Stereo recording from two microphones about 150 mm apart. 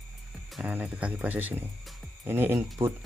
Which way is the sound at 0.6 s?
10° right (ahead or behind).